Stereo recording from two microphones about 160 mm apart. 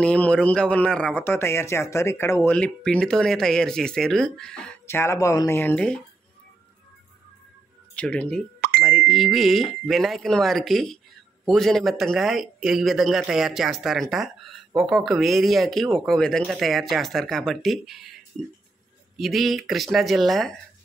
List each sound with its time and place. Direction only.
0.0 s speech: 5° left (ahead or behind)
4.8 s speech: 15° left (ahead or behind)
7.9 s speech: 10° left (ahead or behind)
8.5 s plop: 75° right (ahead or behind)
8.8 s a man's voice: centre (ahead or behind)
19.1 s a man's voice: centre (ahead or behind)